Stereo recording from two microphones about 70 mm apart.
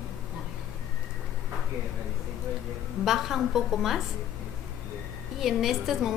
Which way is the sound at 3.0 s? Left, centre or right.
Centre.